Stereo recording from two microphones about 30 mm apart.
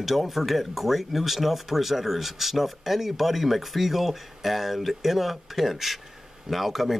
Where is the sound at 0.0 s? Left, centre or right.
Centre.